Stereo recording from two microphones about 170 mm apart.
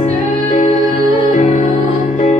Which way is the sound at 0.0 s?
50° left (ahead or behind).